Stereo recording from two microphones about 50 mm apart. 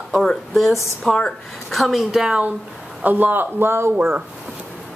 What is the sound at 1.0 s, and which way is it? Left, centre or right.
A woman's voice, centre.